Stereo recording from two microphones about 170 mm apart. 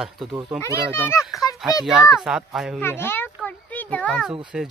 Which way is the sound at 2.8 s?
15° left (ahead or behind).